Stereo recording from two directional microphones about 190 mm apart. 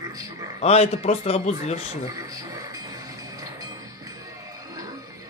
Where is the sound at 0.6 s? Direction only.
35° left (ahead or behind).